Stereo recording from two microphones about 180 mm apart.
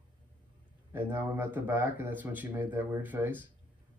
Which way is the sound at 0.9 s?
10° right (ahead or behind).